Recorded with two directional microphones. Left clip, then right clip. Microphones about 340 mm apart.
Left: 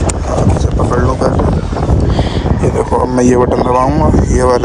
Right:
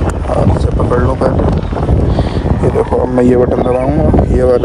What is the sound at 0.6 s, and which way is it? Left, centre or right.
Speech, centre.